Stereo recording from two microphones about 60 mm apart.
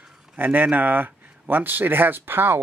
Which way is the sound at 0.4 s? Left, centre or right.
Right.